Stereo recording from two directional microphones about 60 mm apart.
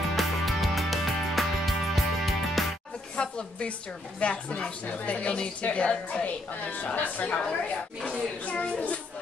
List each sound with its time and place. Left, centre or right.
0.1 s music: centre
3.2 s a sound: centre
4.2 s a woman's voice: left
8.5 s a woman's voice: left